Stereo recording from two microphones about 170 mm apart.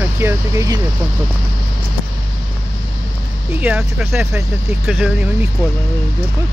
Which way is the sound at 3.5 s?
5° right (ahead or behind).